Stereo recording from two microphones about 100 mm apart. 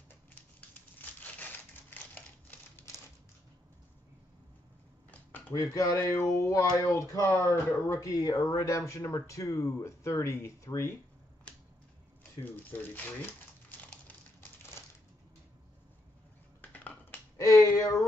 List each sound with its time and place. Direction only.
0.1 s a sound: 20° left (ahead or behind)
5.3 s speech: 25° left (ahead or behind)
12.6 s crumpling: 20° left (ahead or behind)
16.8 s finger snapping: 20° left (ahead or behind)
17.4 s finger snapping: 35° left (ahead or behind)